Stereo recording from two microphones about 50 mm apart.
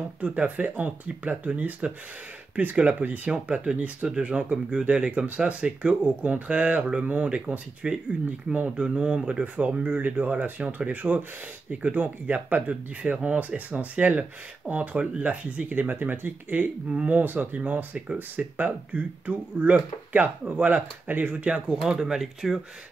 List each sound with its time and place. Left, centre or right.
0.2 s speech: right
7.8 s speech: centre; by 16.7 s right
16.9 s speech: right
17.2 s speech: right
17.9 s speech: right
18.3 s speech: right
21.5 s speech: right